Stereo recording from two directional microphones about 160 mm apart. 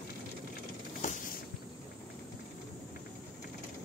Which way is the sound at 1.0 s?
50° left (ahead or behind).